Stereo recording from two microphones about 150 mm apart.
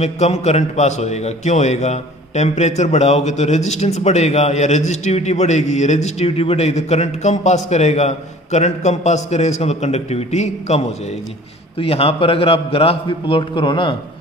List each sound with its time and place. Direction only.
0.0 s a man's voice: 45° left (ahead or behind)
11.8 s a man's voice: 40° left (ahead or behind)